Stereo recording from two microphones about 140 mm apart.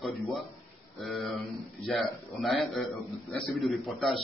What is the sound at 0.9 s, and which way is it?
Speech, centre (ahead or behind).